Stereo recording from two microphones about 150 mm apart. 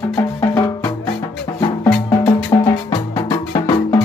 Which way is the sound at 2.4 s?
30° left (ahead or behind).